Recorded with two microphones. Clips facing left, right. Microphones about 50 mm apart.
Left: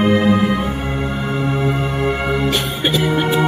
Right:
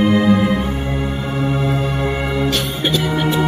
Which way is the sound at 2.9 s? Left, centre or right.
Centre.